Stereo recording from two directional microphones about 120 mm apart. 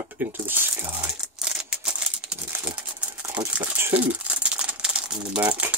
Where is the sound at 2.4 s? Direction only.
15° right (ahead or behind).